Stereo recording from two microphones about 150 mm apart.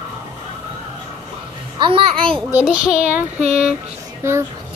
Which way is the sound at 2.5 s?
10° right (ahead or behind).